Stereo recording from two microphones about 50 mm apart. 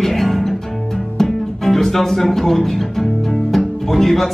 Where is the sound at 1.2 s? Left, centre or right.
Centre.